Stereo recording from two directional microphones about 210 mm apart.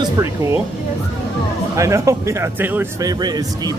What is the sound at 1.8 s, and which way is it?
Speech, 15° right (ahead or behind).